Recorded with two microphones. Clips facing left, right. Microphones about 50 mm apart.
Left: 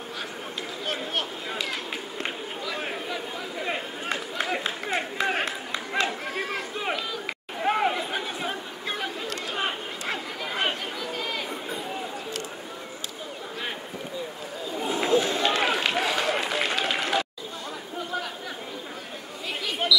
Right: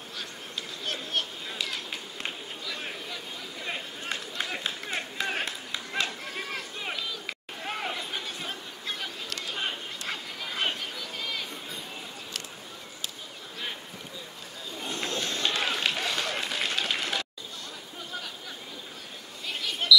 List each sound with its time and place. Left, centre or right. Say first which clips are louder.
0.8 s a sound: left 2 dB; centre
2.6 s chatter: left 6 dB; left
6.3 s a sound: left 5 dB; left
9.5 s chatter: left 3 dB; centre
14.8 s run: left 10 dB; centre
19.6 s chatter: right 1 dB; centre